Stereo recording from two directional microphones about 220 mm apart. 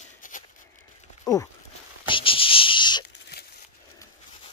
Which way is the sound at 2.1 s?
25° left (ahead or behind).